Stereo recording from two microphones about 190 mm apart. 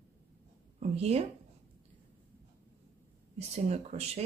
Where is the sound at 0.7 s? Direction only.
35° right (ahead or behind).